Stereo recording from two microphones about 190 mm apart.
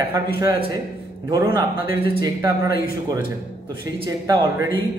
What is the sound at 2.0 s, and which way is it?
Speech, 20° right (ahead or behind).